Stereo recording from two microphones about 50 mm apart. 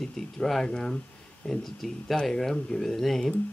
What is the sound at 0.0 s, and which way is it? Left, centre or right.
Speech, centre.